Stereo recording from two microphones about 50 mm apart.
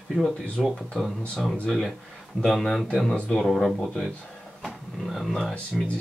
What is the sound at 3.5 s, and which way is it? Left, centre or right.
Speech, centre.